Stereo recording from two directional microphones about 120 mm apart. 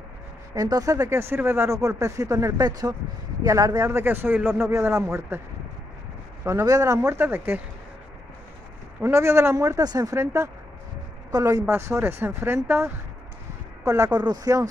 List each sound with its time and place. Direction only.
0.6 s speech: 30° right (ahead or behind)
6.4 s speech: 25° right (ahead or behind)
7.2 s speech: 15° right (ahead or behind)
9.0 s speech: 25° right (ahead or behind)